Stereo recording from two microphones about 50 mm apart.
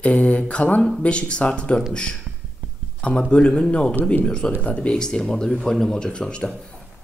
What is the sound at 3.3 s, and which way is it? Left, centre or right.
Speech, centre.